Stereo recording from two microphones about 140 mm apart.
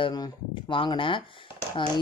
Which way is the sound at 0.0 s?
35° left (ahead or behind).